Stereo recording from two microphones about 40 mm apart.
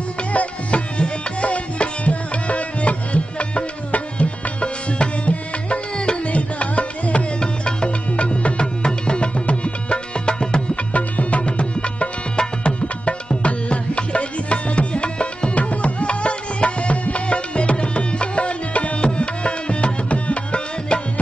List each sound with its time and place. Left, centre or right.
0.3 s music: left
7.3 s music: left